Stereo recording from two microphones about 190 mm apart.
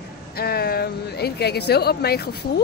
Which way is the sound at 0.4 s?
55° left (ahead or behind).